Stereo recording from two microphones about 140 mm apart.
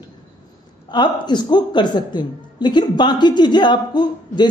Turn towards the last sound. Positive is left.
turn(degrees=30)  # may be behind; listen again after turning